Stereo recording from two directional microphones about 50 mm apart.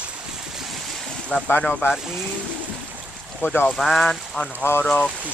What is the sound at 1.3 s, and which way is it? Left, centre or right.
Speech, left.